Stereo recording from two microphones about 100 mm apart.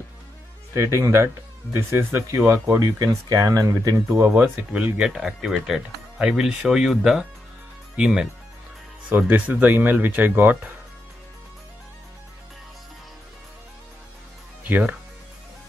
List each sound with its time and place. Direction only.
0.7 s speech: 30° right (ahead or behind)
4.4 s speech: 10° right (ahead or behind)
14.6 s speech: 15° right (ahead or behind)